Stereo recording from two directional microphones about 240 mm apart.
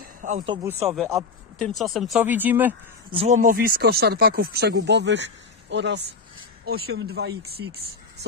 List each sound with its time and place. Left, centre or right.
0.0 s a sound: right
0.7 s speech: centre
3.1 s speech: right